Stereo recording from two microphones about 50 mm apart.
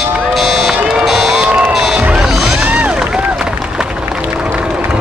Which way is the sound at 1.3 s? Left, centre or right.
Centre.